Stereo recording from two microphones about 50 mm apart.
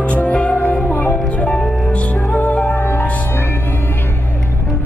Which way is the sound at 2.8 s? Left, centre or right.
Left.